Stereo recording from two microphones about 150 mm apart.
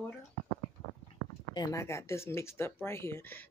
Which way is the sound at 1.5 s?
25° left (ahead or behind).